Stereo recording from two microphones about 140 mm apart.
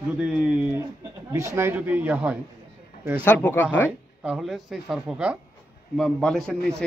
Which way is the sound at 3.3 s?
15° left (ahead or behind).